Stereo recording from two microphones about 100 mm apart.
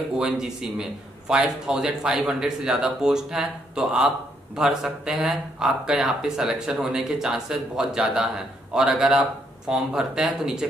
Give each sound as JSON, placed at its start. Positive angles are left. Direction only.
{"t": 0.2, "sound": "speech", "side_deg": -5}